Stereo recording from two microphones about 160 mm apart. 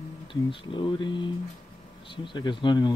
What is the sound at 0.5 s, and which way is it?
Speech, 30° left (ahead or behind).